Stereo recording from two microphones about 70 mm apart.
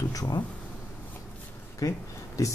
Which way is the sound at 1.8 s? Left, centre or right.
Left.